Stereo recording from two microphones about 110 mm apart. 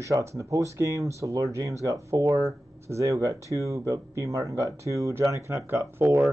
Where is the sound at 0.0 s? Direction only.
25° right (ahead or behind).